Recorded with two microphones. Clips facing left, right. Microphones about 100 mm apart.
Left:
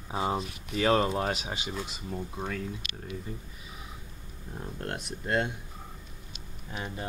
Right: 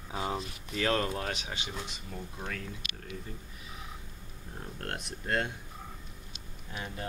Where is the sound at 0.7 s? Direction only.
20° left (ahead or behind).